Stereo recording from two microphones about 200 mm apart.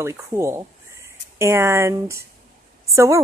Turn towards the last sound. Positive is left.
turn(degrees=-15)  # may be behind; listen again after turning